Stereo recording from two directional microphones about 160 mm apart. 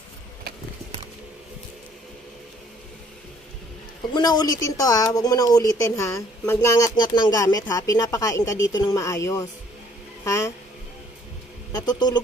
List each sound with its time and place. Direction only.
4.1 s speech: 25° left (ahead or behind)
11.7 s speech: 25° left (ahead or behind)